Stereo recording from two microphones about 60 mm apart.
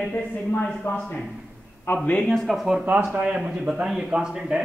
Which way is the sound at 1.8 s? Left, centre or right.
Left.